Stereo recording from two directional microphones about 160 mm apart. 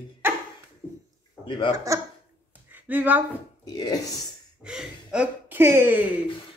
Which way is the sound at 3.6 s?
25° left (ahead or behind).